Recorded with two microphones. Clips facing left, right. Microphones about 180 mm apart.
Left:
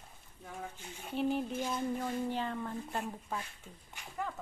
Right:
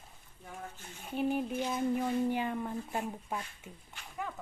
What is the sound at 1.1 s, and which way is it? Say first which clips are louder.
Speech: right 1 dB; 5° right (ahead or behind).